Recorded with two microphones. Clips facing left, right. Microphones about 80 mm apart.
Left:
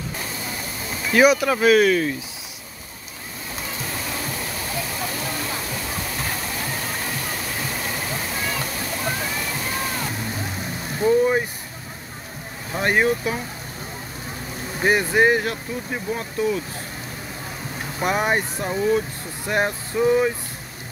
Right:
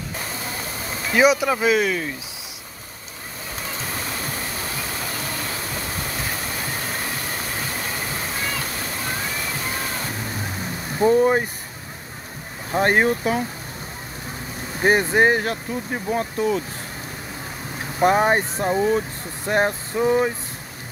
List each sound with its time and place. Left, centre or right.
1.2 s speech: centre
11.0 s speech: right
12.7 s speech: right
14.9 s speech: right
18.0 s speech: right